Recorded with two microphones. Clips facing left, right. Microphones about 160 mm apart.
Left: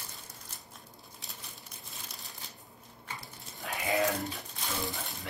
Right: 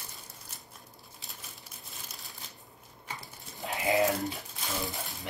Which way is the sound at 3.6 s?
20° right (ahead or behind).